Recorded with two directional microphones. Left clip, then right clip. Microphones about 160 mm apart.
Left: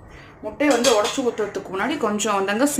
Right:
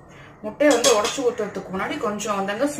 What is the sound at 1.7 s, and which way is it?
Speech, 90° left.